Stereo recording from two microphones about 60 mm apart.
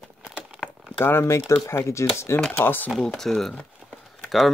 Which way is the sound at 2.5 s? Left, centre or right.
Left.